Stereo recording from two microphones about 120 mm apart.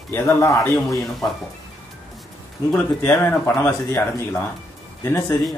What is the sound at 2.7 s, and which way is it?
Speech, 15° left (ahead or behind).